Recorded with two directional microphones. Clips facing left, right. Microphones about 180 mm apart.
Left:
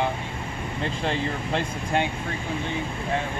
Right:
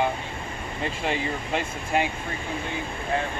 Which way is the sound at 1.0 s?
10° right (ahead or behind).